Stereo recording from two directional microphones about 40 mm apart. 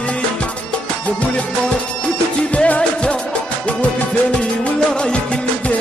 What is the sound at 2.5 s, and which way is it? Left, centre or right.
Music, left.